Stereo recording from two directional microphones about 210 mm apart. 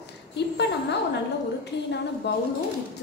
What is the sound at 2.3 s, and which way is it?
Speech, 55° left (ahead or behind).